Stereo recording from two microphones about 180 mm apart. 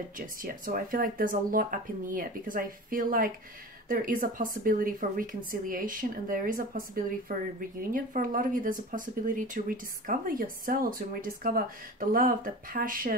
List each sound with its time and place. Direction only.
0.4 s speech: 50° right (ahead or behind)